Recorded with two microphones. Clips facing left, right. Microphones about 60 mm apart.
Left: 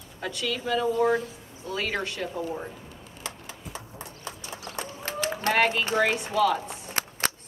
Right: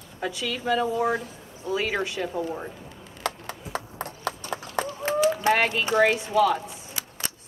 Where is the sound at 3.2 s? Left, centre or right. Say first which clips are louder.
Right 8 dB; right.